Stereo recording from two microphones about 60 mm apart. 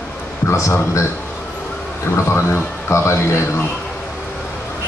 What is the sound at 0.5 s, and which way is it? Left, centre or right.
Speech, left.